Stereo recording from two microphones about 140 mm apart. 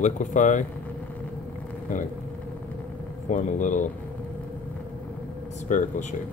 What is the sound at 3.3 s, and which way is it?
Speech, 65° left (ahead or behind).